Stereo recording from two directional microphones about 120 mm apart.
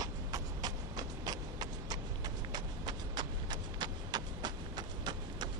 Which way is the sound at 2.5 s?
35° right (ahead or behind).